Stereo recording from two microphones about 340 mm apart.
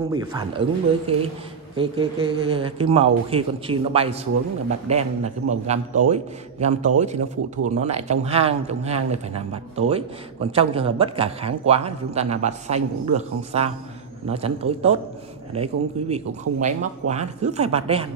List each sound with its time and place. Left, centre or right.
0.1 s a man's voice: centre